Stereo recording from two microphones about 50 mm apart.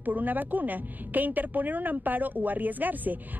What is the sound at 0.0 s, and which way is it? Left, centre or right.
A man's voice, right.